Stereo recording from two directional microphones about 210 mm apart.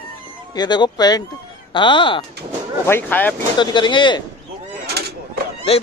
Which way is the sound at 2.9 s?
10° left (ahead or behind).